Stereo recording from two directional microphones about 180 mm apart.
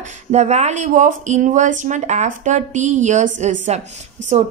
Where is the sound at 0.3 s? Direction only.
40° right (ahead or behind).